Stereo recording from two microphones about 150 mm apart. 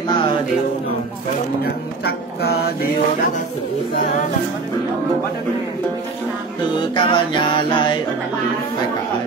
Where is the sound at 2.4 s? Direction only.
90° left.